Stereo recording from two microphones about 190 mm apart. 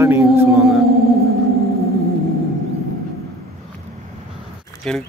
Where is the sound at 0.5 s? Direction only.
Centre (ahead or behind).